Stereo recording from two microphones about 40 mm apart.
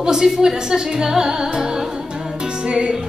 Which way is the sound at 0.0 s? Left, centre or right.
Centre.